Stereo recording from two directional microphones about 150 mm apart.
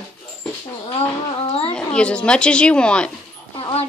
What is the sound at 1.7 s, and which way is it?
A woman's voice, 5° left (ahead or behind).